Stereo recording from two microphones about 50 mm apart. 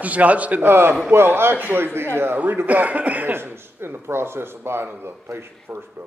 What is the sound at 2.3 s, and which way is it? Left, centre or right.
Speech, right.